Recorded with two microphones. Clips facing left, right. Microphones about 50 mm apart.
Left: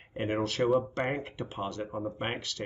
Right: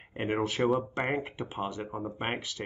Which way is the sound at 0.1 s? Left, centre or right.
Centre.